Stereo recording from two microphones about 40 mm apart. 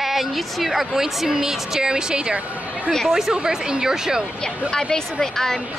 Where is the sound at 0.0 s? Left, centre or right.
Centre; by 2.3 s right.